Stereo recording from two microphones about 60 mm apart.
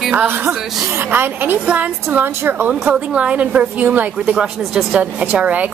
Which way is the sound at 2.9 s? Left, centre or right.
Right.